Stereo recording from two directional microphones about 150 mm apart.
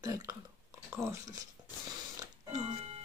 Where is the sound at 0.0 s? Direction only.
25° right (ahead or behind).